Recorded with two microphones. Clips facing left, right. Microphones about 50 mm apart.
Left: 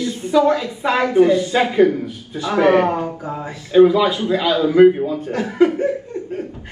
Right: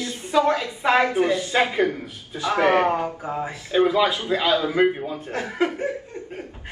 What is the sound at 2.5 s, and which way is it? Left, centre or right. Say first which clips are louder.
Speech: left 4 dB; right.